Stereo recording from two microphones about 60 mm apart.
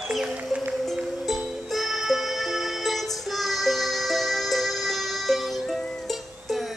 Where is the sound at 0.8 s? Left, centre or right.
Centre.